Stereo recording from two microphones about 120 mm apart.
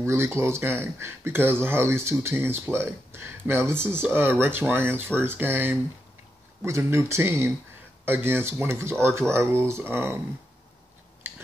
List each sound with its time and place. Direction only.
0.0 s speech: 20° right (ahead or behind)